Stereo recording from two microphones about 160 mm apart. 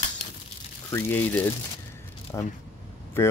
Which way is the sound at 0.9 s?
15° left (ahead or behind).